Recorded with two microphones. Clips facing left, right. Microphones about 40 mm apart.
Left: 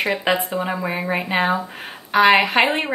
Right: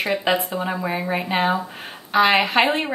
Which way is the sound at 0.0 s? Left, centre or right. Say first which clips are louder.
Left 1 dB; left.